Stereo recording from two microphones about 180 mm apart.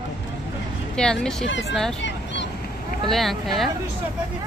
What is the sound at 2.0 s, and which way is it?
Fowl, 80° left.